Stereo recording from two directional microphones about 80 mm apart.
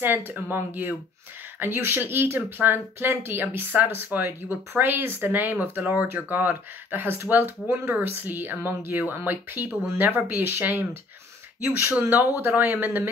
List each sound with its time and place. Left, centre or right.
0.0 s speech: right